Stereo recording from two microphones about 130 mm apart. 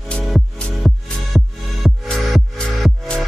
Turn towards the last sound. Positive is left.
turn(degrees=5)  # may be behind; listen again after turning